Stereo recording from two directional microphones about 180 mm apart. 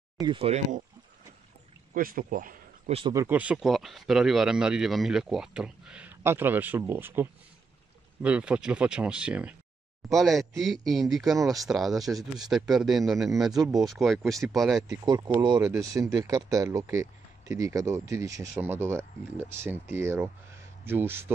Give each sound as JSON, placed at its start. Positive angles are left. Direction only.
{"t": 0.2, "sound": "speech", "side_deg": -30}
{"t": 2.0, "sound": "speech", "side_deg": -50}
{"t": 3.1, "sound": "speech", "side_deg": -15}
{"t": 14.9, "sound": "speech", "side_deg": -20}